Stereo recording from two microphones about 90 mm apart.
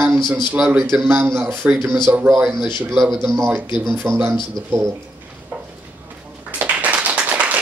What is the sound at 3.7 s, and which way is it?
Speech, 25° right (ahead or behind).